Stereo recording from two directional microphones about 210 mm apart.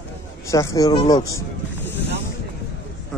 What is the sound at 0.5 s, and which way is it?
Speech, 15° left (ahead or behind).